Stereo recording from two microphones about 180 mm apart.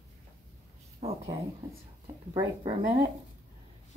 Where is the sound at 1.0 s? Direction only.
35° right (ahead or behind).